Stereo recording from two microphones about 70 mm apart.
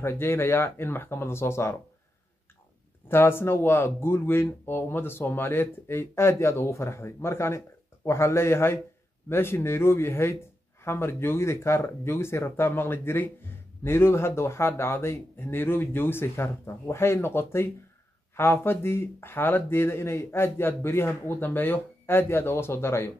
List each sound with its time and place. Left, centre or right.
0.0 s speech: left
3.1 s speech: left